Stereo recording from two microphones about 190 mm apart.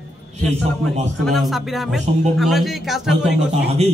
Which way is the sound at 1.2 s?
Centre (ahead or behind).